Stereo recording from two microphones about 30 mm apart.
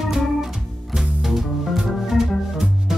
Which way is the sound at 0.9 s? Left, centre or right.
Centre.